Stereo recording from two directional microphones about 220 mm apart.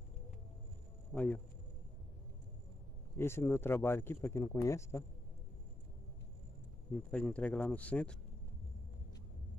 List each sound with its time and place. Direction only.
1.1 s speech: 5° left (ahead or behind)
3.2 s speech: 10° left (ahead or behind)
7.1 s speech: 5° left (ahead or behind)